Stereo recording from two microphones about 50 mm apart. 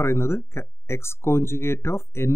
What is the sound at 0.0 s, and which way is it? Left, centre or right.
Speech, left.